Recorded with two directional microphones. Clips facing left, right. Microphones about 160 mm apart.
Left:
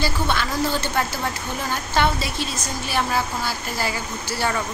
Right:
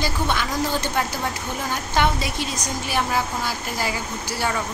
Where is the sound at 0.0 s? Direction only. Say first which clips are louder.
Left 1 dB; 15° right (ahead or behind).